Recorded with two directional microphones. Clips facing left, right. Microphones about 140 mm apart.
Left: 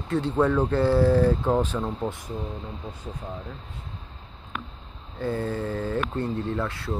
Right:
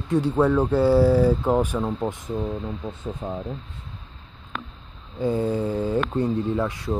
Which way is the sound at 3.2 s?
35° right (ahead or behind).